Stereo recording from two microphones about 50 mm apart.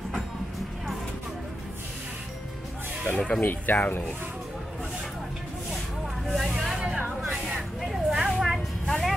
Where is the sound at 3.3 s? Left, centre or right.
Left.